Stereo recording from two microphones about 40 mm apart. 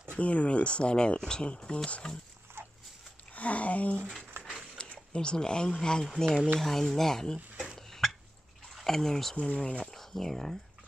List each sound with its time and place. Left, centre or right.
0.2 s speech: left
3.3 s speech: left
4.4 s a sound: right
4.7 s speech: left
7.7 s a sound: centre
8.7 s speech: centre
9.6 s speech: left
9.9 s speech: centre